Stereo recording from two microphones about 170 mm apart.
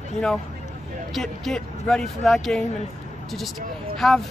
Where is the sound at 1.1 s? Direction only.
Centre (ahead or behind).